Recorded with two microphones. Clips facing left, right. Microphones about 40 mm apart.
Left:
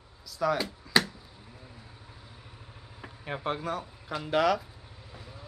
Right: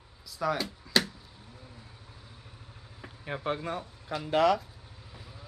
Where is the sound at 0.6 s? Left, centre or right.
Centre.